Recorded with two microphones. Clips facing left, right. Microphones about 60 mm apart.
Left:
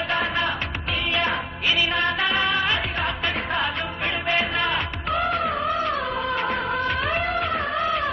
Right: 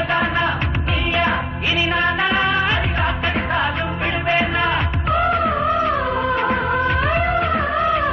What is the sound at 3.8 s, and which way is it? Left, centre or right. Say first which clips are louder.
Music: right 5 dB; centre.